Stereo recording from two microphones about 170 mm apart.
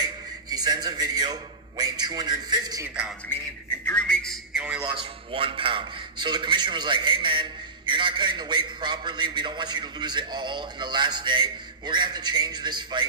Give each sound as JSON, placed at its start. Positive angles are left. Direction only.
{"t": 0.0, "sound": "a sound", "side_deg": -25}
{"t": 3.8, "sound": "a man's voice", "side_deg": 5}
{"t": 4.9, "sound": "a man's voice", "side_deg": -30}